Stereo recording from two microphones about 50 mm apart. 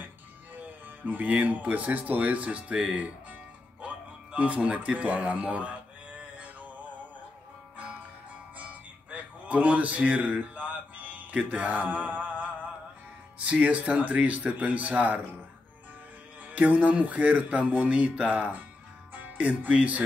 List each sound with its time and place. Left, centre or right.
0.8 s speech: right
6.3 s male singing: right
9.1 s a sound: right
13.4 s speech: right
16.4 s speech: right
19.1 s music: right